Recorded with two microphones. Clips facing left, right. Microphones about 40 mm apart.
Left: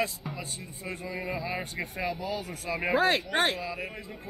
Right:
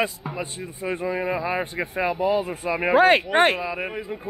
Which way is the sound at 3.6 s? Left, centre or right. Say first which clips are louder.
Right 7 dB; right.